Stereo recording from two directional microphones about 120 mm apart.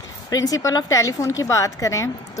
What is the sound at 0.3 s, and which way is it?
A woman's voice, 30° left (ahead or behind).